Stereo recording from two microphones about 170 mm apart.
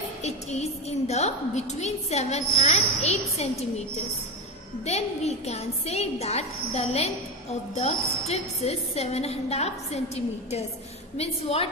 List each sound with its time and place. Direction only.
0.2 s a woman's voice: 40° left (ahead or behind)
4.8 s a woman's voice: 40° left (ahead or behind)